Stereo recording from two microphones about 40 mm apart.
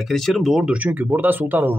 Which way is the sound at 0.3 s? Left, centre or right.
Centre.